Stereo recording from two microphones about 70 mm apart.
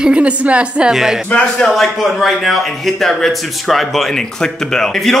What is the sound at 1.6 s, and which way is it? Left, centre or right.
A man's voice, centre.